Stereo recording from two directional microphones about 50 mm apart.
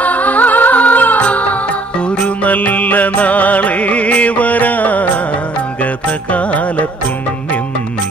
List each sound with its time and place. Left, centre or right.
0.0 s music: left
6.3 s music: left